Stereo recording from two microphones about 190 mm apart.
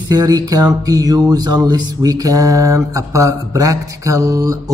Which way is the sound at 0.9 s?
20° right (ahead or behind).